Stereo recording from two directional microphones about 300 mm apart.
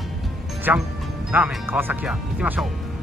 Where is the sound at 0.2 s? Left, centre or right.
Centre.